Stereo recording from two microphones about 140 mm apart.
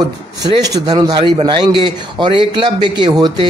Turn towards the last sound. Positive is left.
turn(degrees=-30)  # may be behind; listen again after turning